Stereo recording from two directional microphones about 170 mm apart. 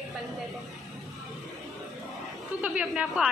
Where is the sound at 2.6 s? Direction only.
10° right (ahead or behind).